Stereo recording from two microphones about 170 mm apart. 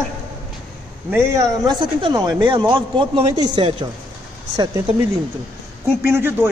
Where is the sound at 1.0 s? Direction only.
15° right (ahead or behind).